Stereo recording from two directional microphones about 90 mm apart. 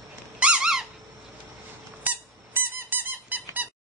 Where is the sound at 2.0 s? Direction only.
20° right (ahead or behind).